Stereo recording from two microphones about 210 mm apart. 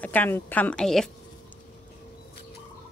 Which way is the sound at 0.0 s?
10° left (ahead or behind).